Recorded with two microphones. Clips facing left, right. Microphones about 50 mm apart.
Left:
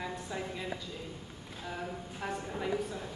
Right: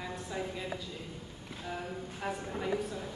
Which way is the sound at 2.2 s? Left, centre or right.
Centre.